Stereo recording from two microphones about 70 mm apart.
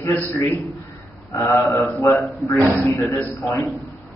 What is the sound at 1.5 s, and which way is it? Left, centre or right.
Mantra, left.